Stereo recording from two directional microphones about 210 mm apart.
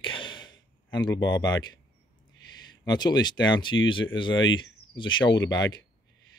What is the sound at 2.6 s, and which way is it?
Speech, 20° left (ahead or behind).